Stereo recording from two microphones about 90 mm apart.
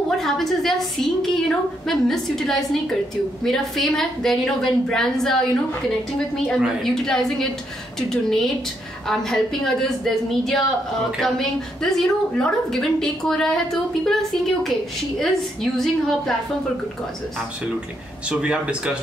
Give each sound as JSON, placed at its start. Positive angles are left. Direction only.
{"t": 0.2, "sound": "a woman's voice", "side_deg": 5}
{"t": 6.6, "sound": "a woman's voice", "side_deg": 5}
{"t": 18.3, "sound": "speech", "side_deg": -10}